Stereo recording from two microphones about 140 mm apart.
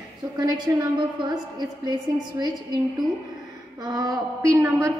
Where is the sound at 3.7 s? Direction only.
25° right (ahead or behind).